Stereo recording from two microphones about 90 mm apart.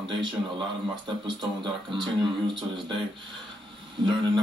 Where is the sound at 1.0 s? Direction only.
55° right (ahead or behind).